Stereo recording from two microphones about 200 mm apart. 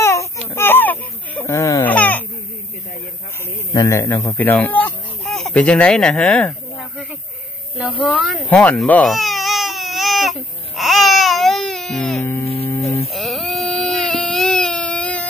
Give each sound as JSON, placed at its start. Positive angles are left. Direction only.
{"t": 0.0, "sound": "baby cry", "side_deg": 15}
{"t": 3.7, "sound": "speech", "side_deg": 15}
{"t": 7.7, "sound": "cat", "side_deg": -5}
{"t": 12.8, "sound": "a sound", "side_deg": 30}
{"t": 13.1, "sound": "baby cry", "side_deg": 0}